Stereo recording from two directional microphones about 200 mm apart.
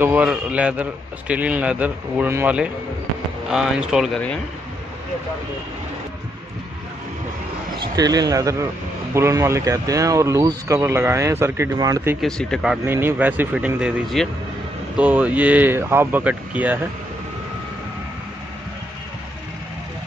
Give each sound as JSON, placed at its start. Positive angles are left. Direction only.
{"t": 0.0, "sound": "speech", "side_deg": -5}
{"t": 7.8, "sound": "speech", "side_deg": -20}
{"t": 12.2, "sound": "speech", "side_deg": 5}
{"t": 12.8, "sound": "speech", "side_deg": -10}